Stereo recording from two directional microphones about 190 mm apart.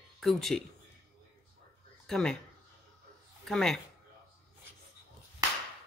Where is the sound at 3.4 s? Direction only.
Centre (ahead or behind).